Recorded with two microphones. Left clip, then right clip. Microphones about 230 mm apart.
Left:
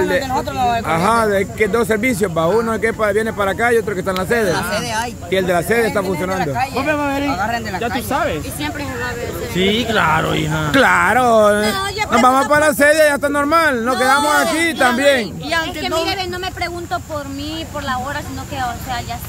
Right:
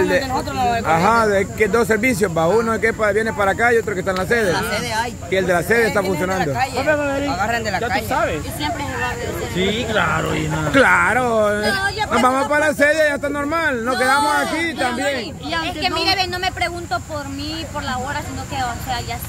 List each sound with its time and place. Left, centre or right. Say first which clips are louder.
0.0 s speech: left 1 dB; centre
6.0 s speech: even; centre
8.1 s speech: left 3 dB; left
9.6 s speech: left 4 dB; left
10.7 s speech: left 1 dB; centre
14.6 s speech: left 6 dB; left
16.0 s speech: right 3 dB; centre